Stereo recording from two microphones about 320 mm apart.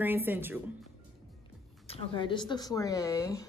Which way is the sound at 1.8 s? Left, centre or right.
Centre.